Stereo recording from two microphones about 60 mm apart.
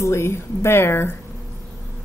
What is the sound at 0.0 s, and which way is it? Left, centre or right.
Speech, left.